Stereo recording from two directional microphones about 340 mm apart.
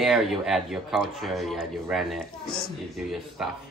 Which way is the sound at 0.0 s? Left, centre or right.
Centre.